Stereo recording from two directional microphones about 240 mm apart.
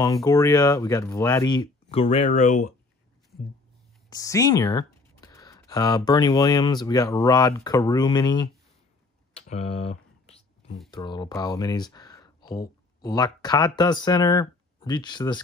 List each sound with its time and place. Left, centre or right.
0.0 s speech: centre; by 2.7 s left
4.1 s speech: centre
9.5 s typing: left
10.9 s speech: centre